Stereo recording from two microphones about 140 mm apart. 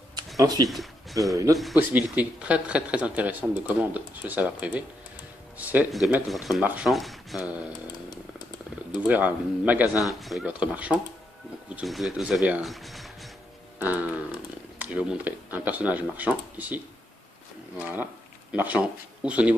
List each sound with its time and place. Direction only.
0.4 s speech: 30° right (ahead or behind)
1.8 s speech: 10° right (ahead or behind)
6.6 s speech: 10° right (ahead or behind)
6.9 s speech: centre (ahead or behind)
9.0 s speech: 10° right (ahead or behind)
13.7 s a sound: 10° right (ahead or behind)
14.8 s speech: 10° right (ahead or behind)